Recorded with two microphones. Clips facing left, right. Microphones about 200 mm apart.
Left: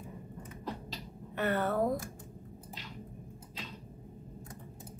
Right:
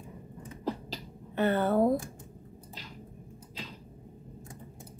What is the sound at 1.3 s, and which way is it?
Speech, 30° right (ahead or behind).